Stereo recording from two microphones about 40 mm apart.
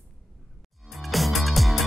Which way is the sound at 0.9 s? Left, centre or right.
Centre.